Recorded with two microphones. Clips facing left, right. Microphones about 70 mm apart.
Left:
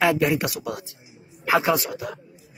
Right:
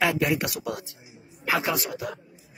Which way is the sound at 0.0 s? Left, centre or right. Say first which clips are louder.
Left 3 dB; centre.